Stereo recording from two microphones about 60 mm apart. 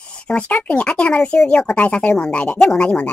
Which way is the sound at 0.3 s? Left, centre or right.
Left.